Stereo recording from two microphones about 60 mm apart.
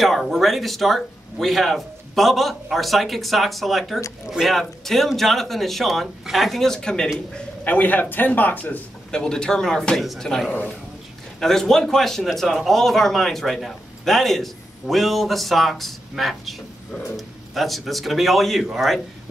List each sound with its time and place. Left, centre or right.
0.0 s a man's voice: centre
7.6 s speech: left
9.1 s a man's voice: centre
17.6 s a man's voice: centre